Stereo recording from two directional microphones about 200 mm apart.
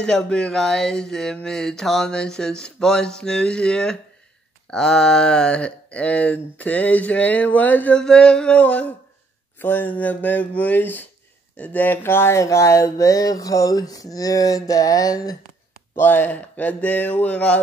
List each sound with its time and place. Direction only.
0.0 s speech: 5° left (ahead or behind)